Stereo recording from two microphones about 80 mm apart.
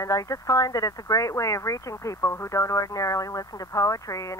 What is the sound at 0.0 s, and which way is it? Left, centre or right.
Speech, left.